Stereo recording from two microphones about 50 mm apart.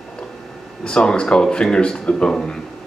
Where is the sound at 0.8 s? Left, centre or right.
Centre.